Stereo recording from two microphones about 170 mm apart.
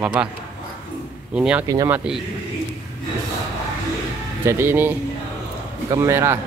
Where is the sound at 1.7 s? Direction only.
20° right (ahead or behind).